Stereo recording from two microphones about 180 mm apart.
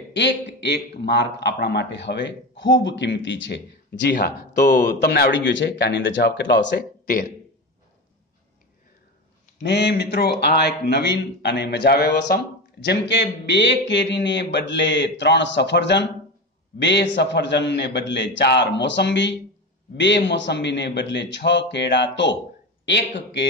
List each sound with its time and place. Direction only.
0.1 s a man's voice: 75° left (ahead or behind)
9.6 s a man's voice: 65° left (ahead or behind)